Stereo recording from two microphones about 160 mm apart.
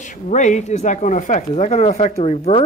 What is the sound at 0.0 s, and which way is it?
Speech, 50° left (ahead or behind).